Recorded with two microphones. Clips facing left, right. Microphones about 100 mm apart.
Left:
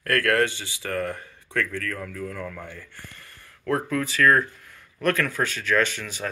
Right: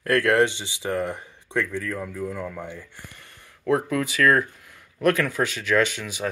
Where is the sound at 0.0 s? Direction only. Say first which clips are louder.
Right 3 dB; 20° right (ahead or behind).